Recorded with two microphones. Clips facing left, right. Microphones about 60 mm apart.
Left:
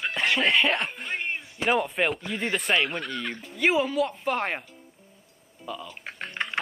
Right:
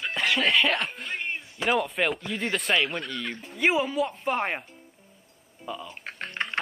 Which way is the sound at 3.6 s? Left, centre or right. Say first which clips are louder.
Left 1 dB; centre.